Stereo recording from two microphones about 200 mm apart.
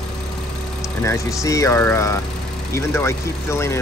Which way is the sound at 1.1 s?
15° left (ahead or behind).